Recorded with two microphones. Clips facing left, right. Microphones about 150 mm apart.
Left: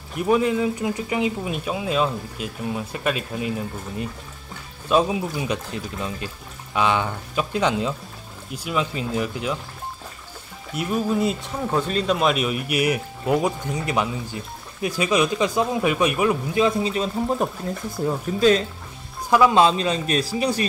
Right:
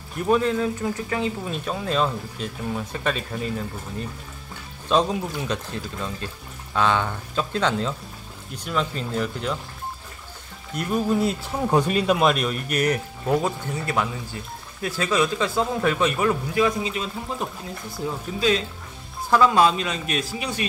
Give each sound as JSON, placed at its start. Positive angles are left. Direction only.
{"t": 0.2, "sound": "speech", "side_deg": 10}
{"t": 10.7, "sound": "speech", "side_deg": 5}
{"t": 11.6, "sound": "speech", "side_deg": -15}
{"t": 16.6, "sound": "a man's voice", "side_deg": 35}
{"t": 19.3, "sound": "speech", "side_deg": 15}
{"t": 19.6, "sound": "a man's voice", "side_deg": 30}